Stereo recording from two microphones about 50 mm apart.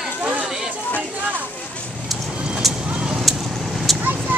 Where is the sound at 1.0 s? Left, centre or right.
Right.